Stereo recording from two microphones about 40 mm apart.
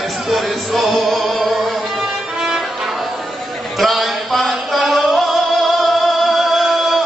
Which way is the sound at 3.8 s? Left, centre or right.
Centre.